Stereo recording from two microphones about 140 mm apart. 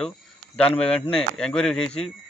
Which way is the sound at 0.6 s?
10° left (ahead or behind).